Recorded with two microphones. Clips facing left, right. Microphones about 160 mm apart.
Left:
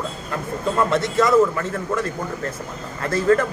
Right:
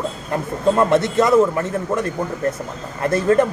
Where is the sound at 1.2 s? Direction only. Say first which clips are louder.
Even; 20° right (ahead or behind).